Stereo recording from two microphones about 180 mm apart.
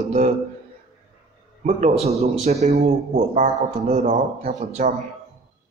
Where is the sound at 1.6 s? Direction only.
40° right (ahead or behind).